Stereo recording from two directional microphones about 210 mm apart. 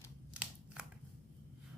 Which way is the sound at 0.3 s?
5° right (ahead or behind).